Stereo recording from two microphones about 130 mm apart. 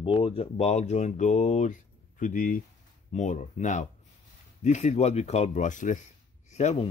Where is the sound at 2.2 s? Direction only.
90° left.